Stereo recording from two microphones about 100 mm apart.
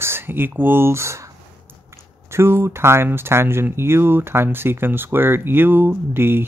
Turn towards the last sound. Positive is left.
turn(degrees=-20)  # may be behind; listen again after turning